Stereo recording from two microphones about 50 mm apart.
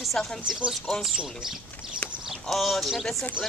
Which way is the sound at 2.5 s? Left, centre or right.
Centre.